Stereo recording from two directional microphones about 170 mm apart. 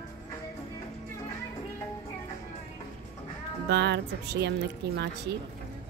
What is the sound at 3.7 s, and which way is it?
Speech, 80° right.